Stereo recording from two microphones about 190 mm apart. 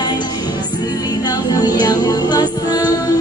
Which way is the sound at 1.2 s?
20° left (ahead or behind).